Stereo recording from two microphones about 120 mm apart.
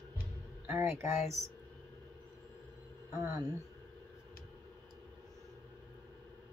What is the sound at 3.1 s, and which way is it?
Speech, 25° right (ahead or behind).